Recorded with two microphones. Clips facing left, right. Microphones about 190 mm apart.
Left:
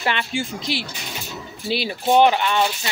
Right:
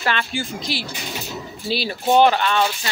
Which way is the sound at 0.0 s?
20° left (ahead or behind).